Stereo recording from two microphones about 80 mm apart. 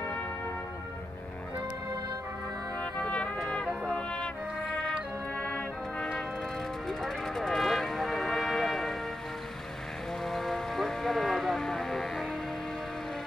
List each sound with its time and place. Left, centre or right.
2.8 s music: centre
5.4 s brass instrument: centre
6.9 s music: centre
10.3 s vehicle: centre